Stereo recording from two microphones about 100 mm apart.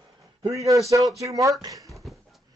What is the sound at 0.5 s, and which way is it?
Speech, 30° right (ahead or behind).